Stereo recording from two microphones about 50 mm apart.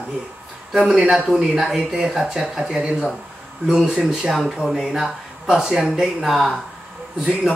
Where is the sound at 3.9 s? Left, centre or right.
Centre.